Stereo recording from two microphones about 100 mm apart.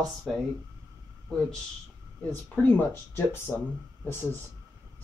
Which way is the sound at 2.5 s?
15° left (ahead or behind).